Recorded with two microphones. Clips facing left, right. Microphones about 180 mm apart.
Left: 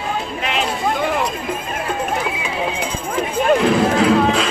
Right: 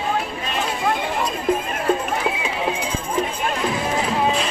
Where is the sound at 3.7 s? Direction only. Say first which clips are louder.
Left 8 dB; 85° left.